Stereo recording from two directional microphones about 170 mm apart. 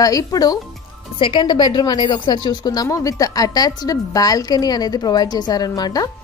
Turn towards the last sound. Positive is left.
turn(degrees=20)  # may be behind; listen again after turning